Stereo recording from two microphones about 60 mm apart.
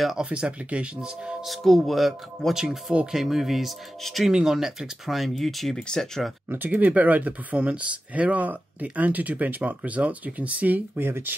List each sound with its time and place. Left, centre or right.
0.2 s speech: centre
1.4 s speech: centre
2.9 s speech: centre
3.2 s speech: centre
6.5 s speech: right
11.0 s speech: right